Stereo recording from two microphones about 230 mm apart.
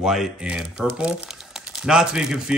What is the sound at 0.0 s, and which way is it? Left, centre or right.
Speech, centre.